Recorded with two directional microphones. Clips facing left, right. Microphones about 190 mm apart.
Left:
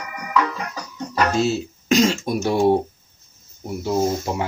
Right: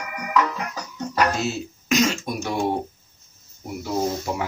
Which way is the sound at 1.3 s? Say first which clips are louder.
Left 6 dB; 30° left (ahead or behind).